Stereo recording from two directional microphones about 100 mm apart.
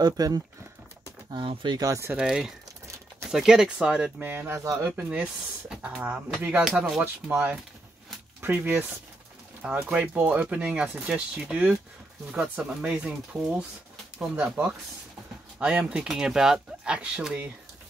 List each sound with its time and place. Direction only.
0.0 s speech: 40° right (ahead or behind)
1.8 s speech: 30° right (ahead or behind)
2.1 s speech: 10° right (ahead or behind)
4.2 s speech: 20° right (ahead or behind)
5.2 s speech: 10° right (ahead or behind)
9.6 s speech: 10° right (ahead or behind)